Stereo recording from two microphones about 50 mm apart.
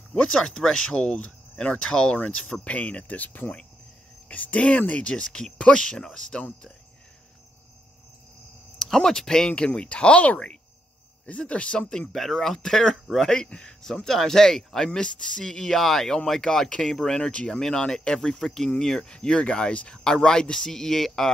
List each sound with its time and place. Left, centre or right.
0.1 s speech: centre
8.9 s speech: centre
12.1 s speech: centre